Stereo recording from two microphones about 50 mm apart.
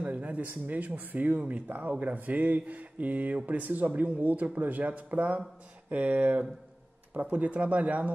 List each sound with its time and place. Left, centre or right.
0.0 s speech: right